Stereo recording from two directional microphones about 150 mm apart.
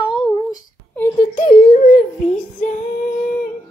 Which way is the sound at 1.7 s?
70° left (ahead or behind).